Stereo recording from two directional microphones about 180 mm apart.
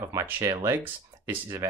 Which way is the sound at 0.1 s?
15° right (ahead or behind).